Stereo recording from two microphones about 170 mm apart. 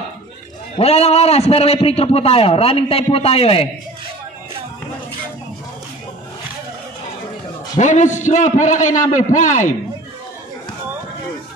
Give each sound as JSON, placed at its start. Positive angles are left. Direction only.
{"t": 0.7, "sound": "a man's voice", "side_deg": 35}
{"t": 7.7, "sound": "a man's voice", "side_deg": 45}